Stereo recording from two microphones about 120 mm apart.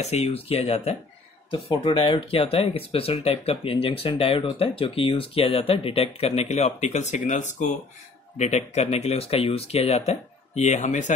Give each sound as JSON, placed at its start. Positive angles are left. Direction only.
{"t": 0.0, "sound": "speech", "side_deg": 60}
{"t": 2.0, "sound": "speech", "side_deg": 50}
{"t": 8.4, "sound": "speech", "side_deg": 70}